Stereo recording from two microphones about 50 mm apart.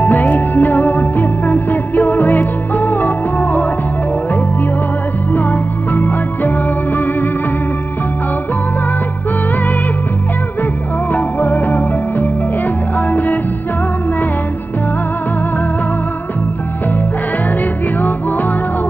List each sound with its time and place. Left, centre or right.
0.0 s music: left
5.9 s music: left
11.1 s music: left